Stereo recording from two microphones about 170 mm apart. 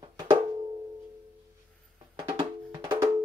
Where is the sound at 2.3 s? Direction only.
20° right (ahead or behind).